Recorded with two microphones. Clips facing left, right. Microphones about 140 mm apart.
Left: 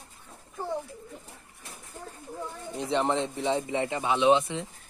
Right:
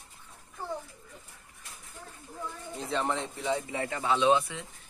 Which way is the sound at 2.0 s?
40° left (ahead or behind).